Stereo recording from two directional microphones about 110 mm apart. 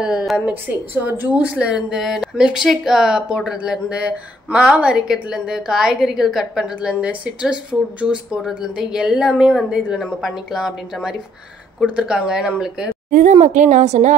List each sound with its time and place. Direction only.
0.5 s a woman's voice: 15° right (ahead or behind)
13.3 s a woman's voice: 90° right